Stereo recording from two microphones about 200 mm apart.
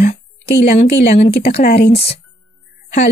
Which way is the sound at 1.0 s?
35° left (ahead or behind).